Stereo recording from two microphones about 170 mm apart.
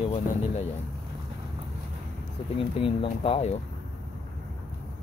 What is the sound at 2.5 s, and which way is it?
Speech, 35° left (ahead or behind).